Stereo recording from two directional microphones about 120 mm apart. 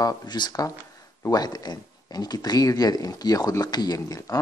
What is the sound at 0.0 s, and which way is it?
Speech, 35° left (ahead or behind).